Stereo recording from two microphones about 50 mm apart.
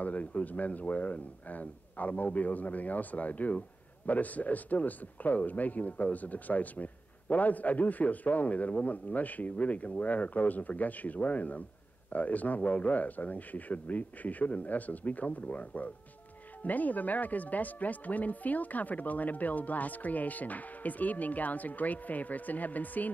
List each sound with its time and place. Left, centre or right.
0.0 s speech: left